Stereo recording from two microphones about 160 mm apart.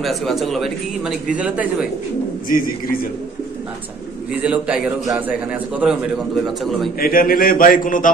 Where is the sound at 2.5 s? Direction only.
60° left (ahead or behind).